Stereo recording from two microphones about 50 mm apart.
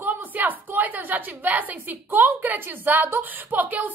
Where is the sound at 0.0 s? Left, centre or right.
Right.